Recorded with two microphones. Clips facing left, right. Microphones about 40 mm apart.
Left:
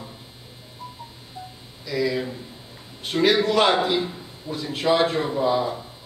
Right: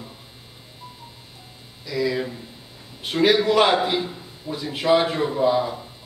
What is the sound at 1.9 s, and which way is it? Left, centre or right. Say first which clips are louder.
A man's voice: even; centre.